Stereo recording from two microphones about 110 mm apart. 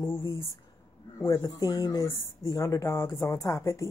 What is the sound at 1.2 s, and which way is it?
A woman's voice, 30° left (ahead or behind).